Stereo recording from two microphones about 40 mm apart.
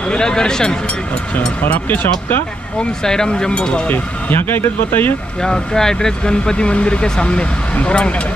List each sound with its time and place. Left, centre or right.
0.1 s speech: centre
1.7 s speech: left
2.8 s speech: centre
3.8 s speech: left
5.4 s speech: centre; by 8.1 s left